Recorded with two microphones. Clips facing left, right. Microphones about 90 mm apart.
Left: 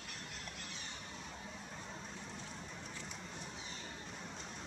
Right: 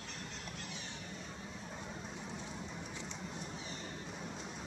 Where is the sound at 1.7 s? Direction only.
10° right (ahead or behind).